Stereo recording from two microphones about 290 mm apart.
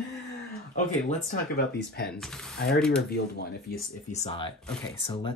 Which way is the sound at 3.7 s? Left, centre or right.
Left.